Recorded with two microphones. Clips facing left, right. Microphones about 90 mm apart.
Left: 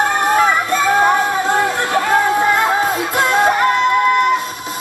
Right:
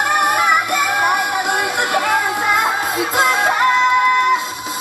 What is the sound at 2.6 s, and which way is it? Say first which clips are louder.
Music: left 3 dB; 20° right (ahead or behind).